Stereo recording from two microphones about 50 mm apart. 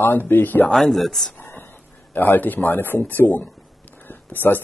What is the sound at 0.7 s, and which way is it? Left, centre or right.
Speech, centre.